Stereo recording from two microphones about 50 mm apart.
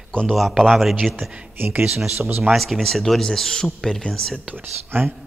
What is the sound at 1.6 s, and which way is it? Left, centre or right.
Speech, right.